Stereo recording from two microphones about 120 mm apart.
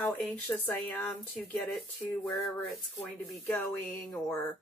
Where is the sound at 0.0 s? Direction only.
15° left (ahead or behind).